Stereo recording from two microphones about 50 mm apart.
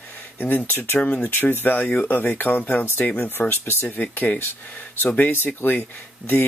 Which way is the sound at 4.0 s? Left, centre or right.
Left.